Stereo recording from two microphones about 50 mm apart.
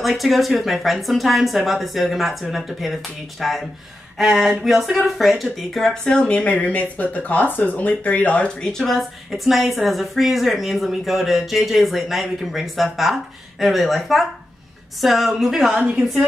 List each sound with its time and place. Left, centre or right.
0.0 s speech: centre
6.2 s speech: left
8.5 s speech: centre
9.3 s a woman's voice: centre